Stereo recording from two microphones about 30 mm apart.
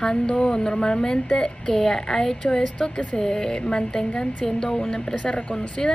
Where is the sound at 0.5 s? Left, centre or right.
Left.